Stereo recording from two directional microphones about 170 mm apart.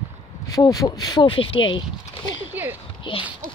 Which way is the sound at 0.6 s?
20° left (ahead or behind).